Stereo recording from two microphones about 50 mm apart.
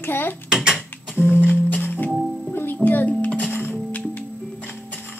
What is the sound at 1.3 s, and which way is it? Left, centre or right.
Music, left.